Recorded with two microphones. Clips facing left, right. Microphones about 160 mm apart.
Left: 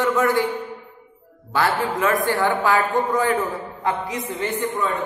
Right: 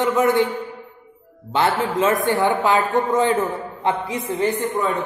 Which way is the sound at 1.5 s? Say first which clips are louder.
Right 2 dB; 20° right (ahead or behind).